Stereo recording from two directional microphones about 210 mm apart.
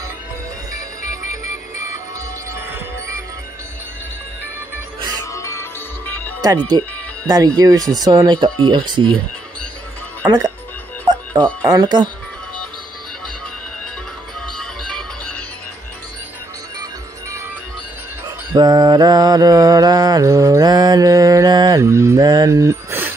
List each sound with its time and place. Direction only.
2.5 s music: 10° right (ahead or behind)
5.2 s music: 15° left (ahead or behind)
6.7 s speech: 20° right (ahead or behind)
10.2 s speech: 20° right (ahead or behind)
14.6 s music: 5° left (ahead or behind)
18.5 s mantra: 20° right (ahead or behind)